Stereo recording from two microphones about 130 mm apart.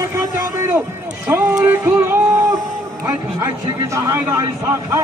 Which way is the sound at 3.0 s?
20° right (ahead or behind).